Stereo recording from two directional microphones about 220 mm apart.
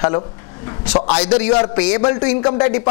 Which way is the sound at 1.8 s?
15° left (ahead or behind).